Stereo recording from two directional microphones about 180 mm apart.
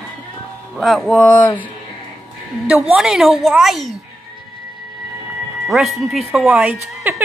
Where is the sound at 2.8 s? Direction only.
5° right (ahead or behind).